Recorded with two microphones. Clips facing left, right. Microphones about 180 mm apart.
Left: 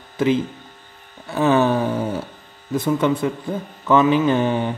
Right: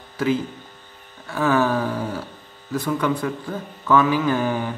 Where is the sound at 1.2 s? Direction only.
20° left (ahead or behind).